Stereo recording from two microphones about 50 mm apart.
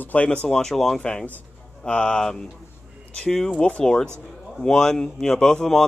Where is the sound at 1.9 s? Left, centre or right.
Centre.